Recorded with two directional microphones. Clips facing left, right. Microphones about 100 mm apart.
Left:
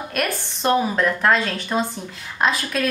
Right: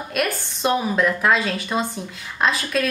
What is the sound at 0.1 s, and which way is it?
Speech, 5° right (ahead or behind).